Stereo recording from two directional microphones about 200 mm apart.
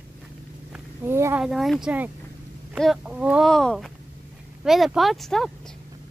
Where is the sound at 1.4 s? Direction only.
Centre (ahead or behind).